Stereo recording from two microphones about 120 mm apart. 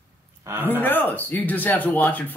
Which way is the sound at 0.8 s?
15° left (ahead or behind).